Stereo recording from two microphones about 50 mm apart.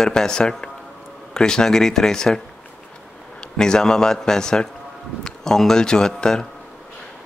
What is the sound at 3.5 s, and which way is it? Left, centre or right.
A man's voice, centre.